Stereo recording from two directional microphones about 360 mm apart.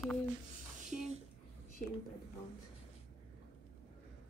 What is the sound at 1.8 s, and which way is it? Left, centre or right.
Speech, centre.